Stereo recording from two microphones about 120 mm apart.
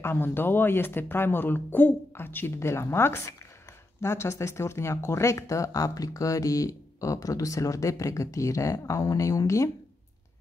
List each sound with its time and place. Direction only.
0.0 s speech: 20° left (ahead or behind)